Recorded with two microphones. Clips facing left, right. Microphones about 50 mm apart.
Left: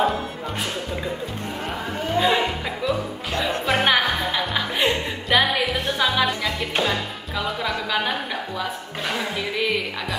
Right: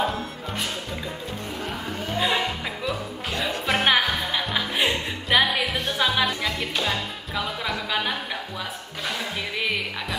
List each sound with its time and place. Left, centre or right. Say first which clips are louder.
2.1 s music: left 4 dB; centre
3.8 s music: even; centre
7.3 s a sound: left 3 dB; centre
9.0 s music: left 3 dB; left